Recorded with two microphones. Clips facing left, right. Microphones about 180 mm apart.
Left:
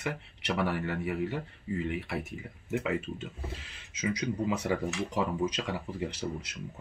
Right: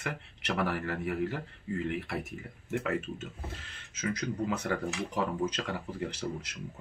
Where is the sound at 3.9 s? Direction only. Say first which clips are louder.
Left 2 dB; 5° left (ahead or behind).